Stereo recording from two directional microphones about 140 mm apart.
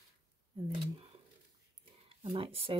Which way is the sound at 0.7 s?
40° right (ahead or behind).